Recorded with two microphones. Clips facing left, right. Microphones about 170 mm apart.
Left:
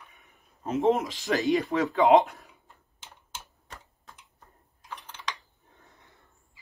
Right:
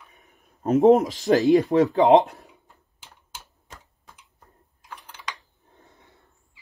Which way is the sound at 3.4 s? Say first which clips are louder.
Even; centre (ahead or behind).